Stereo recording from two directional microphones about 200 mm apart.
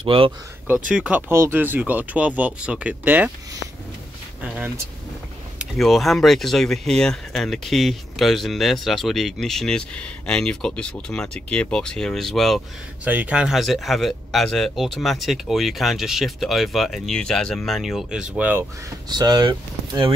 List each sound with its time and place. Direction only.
0.0 s speech: 25° right (ahead or behind)
0.7 s speech: 5° right (ahead or behind)
4.4 s speech: 5° right (ahead or behind)
19.0 s speech: 20° right (ahead or behind)